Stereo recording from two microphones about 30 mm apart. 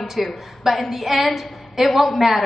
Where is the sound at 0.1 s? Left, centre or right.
Centre.